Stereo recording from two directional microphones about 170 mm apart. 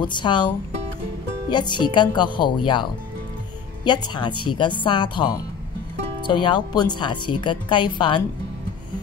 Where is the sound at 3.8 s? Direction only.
25° left (ahead or behind).